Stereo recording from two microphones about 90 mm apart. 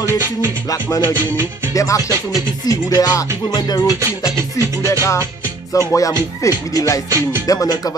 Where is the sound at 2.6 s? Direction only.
45° left (ahead or behind).